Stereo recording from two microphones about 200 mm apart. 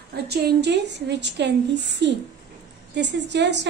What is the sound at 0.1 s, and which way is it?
A woman's voice, 55° right (ahead or behind).